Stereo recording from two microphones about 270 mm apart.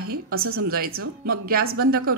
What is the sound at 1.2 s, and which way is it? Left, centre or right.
Speech, right.